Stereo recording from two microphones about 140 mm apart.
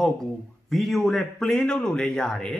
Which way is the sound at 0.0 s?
Centre (ahead or behind).